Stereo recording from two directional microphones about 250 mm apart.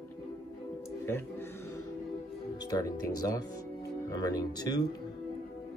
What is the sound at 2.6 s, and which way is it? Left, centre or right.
Speech, centre.